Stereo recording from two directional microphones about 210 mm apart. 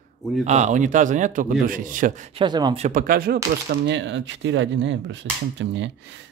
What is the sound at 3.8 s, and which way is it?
Speech, 60° right (ahead or behind).